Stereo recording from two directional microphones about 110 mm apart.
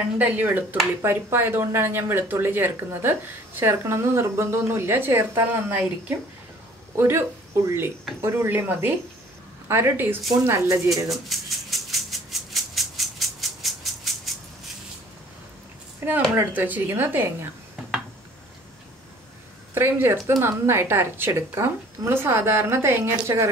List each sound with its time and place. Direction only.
0.2 s speech: 15° right (ahead or behind)
10.9 s music: centre (ahead or behind)
16.3 s speech: 15° right (ahead or behind)
19.7 s speech: 20° right (ahead or behind)